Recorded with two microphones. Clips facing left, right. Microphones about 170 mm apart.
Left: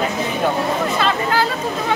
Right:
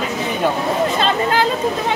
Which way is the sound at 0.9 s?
25° right (ahead or behind).